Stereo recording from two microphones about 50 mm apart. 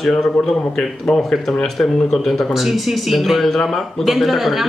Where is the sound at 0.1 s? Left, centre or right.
Centre.